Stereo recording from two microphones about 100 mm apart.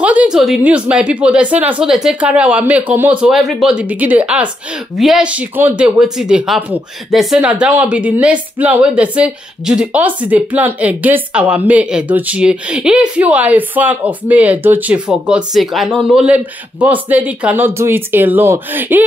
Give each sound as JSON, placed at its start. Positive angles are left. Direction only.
{"t": 0.0, "sound": "a sound", "side_deg": -15}
{"t": 0.7, "sound": "a woman's voice", "side_deg": -10}
{"t": 3.3, "sound": "speech", "side_deg": 0}
{"t": 3.7, "sound": "a woman's voice", "side_deg": -15}
{"t": 4.9, "sound": "a woman's voice", "side_deg": -5}
{"t": 5.9, "sound": "a woman's voice", "side_deg": -5}
{"t": 16.8, "sound": "speech", "side_deg": -15}